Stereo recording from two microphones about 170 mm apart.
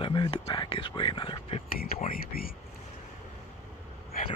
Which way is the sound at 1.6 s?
60° left (ahead or behind).